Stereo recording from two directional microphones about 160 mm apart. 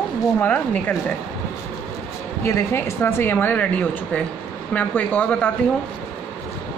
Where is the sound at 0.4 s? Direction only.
10° left (ahead or behind).